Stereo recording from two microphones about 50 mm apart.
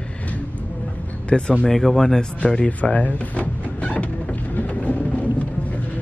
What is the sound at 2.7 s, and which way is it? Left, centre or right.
Door, left.